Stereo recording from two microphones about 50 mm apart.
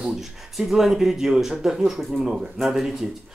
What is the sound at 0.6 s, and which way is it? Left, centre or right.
Speech, centre.